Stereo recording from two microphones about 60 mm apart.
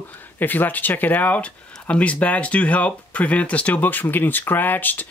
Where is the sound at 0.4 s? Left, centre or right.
Left.